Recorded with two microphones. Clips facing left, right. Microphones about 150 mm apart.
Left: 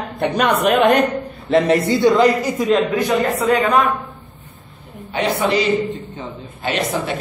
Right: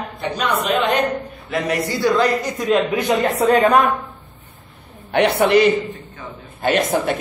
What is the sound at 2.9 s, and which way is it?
Speech, 20° right (ahead or behind).